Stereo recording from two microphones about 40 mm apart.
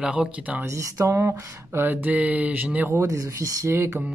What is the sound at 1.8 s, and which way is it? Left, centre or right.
Mantra, right.